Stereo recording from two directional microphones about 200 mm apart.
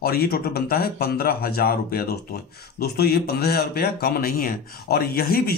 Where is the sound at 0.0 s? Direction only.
50° left (ahead or behind).